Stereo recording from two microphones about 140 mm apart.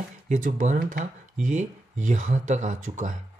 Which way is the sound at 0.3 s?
65° right (ahead or behind).